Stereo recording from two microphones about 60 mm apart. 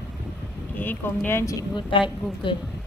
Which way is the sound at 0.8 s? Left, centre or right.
Left.